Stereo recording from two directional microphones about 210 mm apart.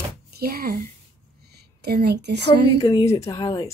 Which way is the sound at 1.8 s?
50° right (ahead or behind).